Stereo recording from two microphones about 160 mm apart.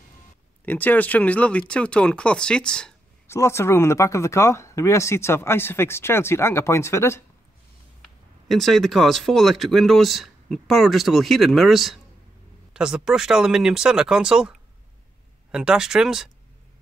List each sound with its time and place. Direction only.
0.7 s speech: 10° left (ahead or behind)
3.3 s speech: 15° left (ahead or behind)
8.5 s speech: centre (ahead or behind)